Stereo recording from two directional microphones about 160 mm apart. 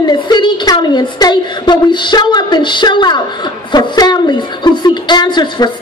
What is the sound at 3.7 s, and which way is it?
Speech, 25° left (ahead or behind).